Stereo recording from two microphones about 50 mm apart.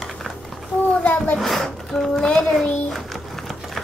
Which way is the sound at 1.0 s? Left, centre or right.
Left.